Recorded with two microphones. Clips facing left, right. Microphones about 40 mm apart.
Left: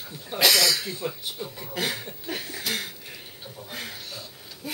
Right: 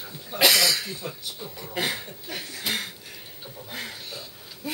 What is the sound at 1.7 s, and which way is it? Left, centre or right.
Speech, centre.